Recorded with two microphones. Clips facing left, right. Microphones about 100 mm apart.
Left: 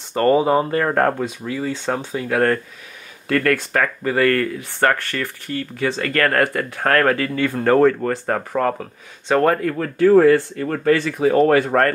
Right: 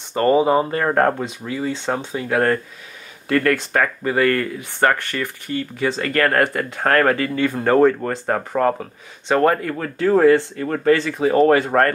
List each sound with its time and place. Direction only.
0.1 s speech: 20° right (ahead or behind)